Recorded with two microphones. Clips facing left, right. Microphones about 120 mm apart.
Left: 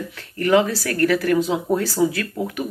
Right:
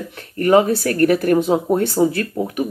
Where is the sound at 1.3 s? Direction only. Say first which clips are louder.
Right 4 dB; 55° right (ahead or behind).